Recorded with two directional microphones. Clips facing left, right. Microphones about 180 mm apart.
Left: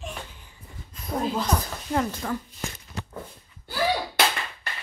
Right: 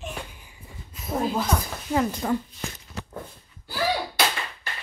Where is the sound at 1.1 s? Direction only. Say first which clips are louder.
Right 1 dB; 5° right (ahead or behind).